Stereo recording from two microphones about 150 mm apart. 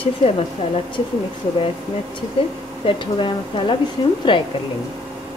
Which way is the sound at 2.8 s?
35° left (ahead or behind).